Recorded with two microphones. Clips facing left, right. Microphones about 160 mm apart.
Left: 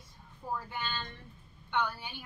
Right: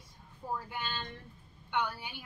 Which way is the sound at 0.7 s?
15° right (ahead or behind).